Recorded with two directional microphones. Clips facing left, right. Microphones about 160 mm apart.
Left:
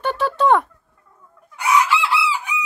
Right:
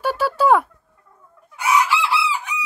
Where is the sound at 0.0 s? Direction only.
5° right (ahead or behind).